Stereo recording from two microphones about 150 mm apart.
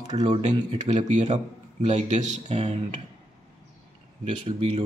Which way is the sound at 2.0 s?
40° right (ahead or behind).